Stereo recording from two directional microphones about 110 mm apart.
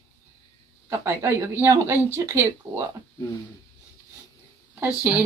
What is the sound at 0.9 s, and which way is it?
Speech, 25° right (ahead or behind).